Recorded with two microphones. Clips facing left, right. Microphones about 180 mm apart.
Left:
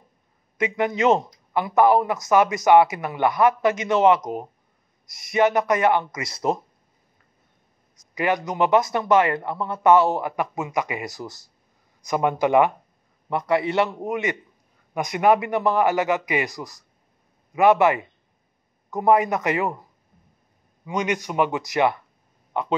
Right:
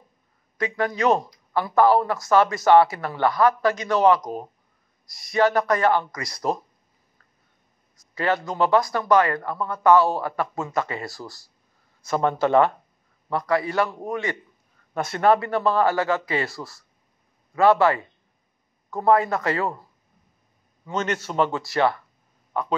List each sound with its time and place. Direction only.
0.6 s speech: 20° left (ahead or behind)
7.9 s a man's voice: 20° left (ahead or behind)
20.8 s a man's voice: 15° left (ahead or behind)